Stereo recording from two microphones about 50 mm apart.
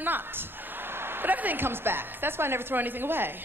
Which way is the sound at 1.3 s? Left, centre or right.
Right.